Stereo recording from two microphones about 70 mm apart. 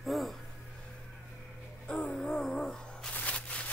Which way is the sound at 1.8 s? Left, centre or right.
Centre.